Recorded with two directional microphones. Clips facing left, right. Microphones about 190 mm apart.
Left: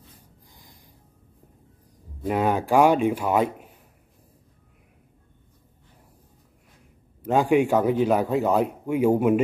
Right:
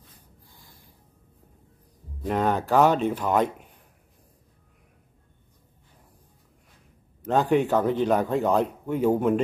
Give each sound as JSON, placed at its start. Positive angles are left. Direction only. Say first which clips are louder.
{"t": 0.5, "sound": "a sound", "louder": "left 2 dB", "side_deg": 15}
{"t": 2.2, "sound": "a man's voice", "louder": "left 1 dB", "side_deg": 10}
{"t": 7.2, "sound": "a man's voice", "louder": "left 2 dB", "side_deg": 10}